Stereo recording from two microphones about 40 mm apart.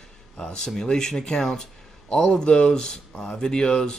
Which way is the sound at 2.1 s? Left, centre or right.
Left.